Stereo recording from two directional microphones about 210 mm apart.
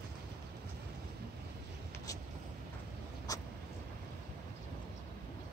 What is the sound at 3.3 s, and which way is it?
Vehicle, 15° left (ahead or behind).